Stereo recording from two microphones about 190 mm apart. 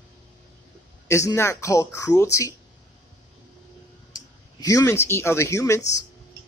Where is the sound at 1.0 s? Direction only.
15° left (ahead or behind).